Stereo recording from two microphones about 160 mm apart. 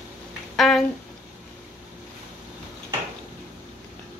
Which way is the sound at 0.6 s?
Centre (ahead or behind).